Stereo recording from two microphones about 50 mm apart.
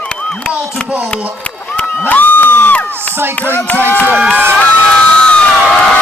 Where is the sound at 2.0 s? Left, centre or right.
Left.